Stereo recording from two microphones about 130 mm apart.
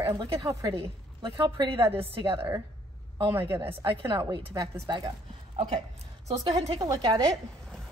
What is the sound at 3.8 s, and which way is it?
A woman's voice, 40° right (ahead or behind).